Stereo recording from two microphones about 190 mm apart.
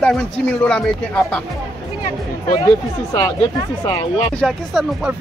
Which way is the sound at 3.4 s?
30° left (ahead or behind).